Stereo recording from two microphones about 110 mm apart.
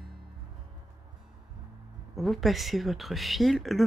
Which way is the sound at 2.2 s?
Centre (ahead or behind).